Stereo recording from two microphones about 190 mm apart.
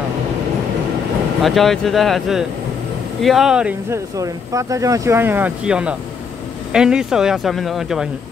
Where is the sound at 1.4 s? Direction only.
Centre (ahead or behind).